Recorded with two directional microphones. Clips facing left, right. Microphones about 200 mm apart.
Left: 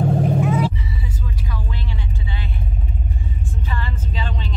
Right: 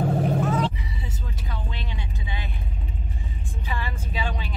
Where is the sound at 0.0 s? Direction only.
Centre (ahead or behind).